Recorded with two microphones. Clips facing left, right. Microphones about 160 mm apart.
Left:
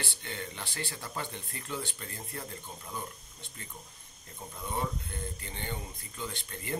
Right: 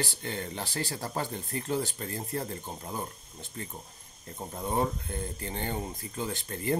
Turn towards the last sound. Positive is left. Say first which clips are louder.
# right 7 dB
turn(degrees=-40)  # may be behind; listen again after turning